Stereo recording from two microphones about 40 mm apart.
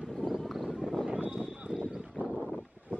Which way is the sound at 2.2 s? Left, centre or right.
Right.